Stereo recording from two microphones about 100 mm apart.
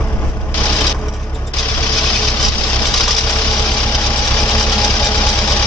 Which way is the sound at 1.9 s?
10° left (ahead or behind).